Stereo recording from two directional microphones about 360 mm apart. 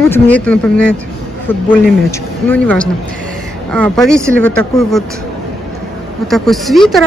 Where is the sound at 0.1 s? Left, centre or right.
Centre.